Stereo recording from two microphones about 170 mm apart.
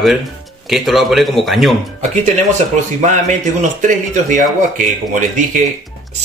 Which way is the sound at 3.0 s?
45° right (ahead or behind).